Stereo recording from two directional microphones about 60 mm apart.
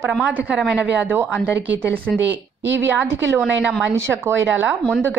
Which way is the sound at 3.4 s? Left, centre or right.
Centre.